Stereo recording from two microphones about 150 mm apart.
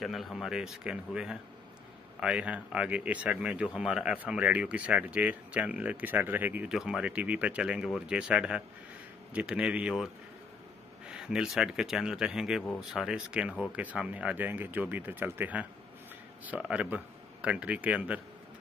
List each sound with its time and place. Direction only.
0.0 s speech: centre (ahead or behind)
11.1 s speech: 5° right (ahead or behind)